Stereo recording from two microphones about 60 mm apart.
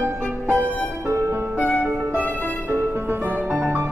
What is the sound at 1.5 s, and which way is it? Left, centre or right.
Music, left.